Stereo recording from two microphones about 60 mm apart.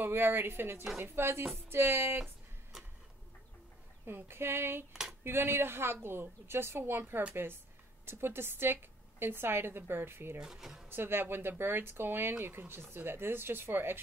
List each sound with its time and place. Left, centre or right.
0.0 s speech: right
1.7 s music: right
4.0 s speech: right
10.4 s speech: centre
10.9 s speech: right